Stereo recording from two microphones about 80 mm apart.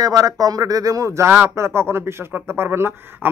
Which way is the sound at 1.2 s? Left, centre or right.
Right.